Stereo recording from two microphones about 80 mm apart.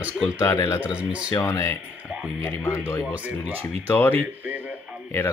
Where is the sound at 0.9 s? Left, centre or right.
Centre.